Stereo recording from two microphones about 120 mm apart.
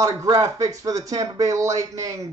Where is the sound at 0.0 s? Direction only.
30° right (ahead or behind).